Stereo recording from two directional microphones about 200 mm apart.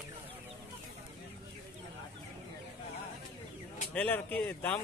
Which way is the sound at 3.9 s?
10° left (ahead or behind).